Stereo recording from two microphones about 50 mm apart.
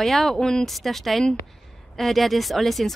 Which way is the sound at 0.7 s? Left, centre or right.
Centre.